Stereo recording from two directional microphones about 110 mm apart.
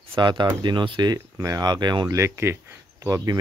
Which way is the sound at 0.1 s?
45° right (ahead or behind).